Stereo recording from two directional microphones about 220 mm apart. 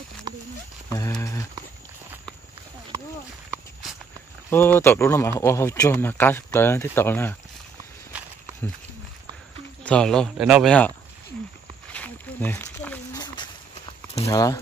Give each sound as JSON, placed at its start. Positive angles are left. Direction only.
{"t": 1.2, "sound": "speech", "side_deg": 15}
{"t": 4.5, "sound": "speech", "side_deg": 10}
{"t": 9.8, "sound": "speech", "side_deg": 5}
{"t": 11.9, "sound": "a sound", "side_deg": 5}
{"t": 13.2, "sound": "a sound", "side_deg": 20}
{"t": 14.3, "sound": "speech", "side_deg": 15}